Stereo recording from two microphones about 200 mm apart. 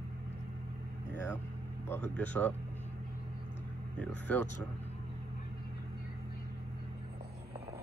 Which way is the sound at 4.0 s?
10° left (ahead or behind).